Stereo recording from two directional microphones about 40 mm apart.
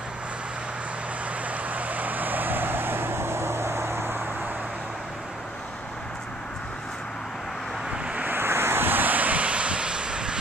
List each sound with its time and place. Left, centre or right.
1.7 s vehicle: right
8.4 s vehicle: right